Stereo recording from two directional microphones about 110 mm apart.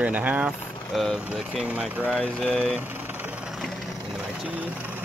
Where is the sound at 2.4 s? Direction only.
5° left (ahead or behind).